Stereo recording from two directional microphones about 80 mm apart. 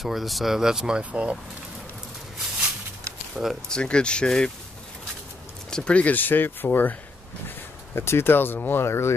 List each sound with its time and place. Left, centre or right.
0.0 s speech: centre
3.6 s speech: centre
5.7 s speech: centre; by 9.1 s left